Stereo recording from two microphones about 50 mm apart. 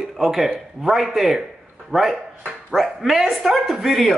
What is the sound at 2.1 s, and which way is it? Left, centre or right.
Dog, centre.